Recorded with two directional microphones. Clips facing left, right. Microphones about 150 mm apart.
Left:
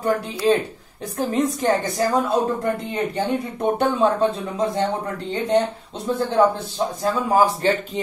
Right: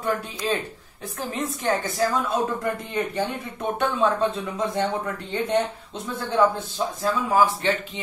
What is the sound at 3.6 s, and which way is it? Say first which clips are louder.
Speech: left 3 dB; 35° left (ahead or behind).